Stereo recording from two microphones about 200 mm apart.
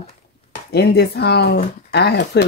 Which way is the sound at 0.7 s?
55° left (ahead or behind).